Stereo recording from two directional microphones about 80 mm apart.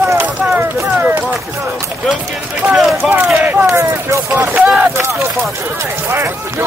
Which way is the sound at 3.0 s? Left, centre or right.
Centre.